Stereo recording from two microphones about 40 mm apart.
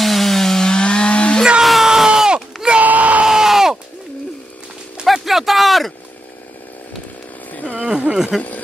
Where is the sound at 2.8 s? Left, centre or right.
Right.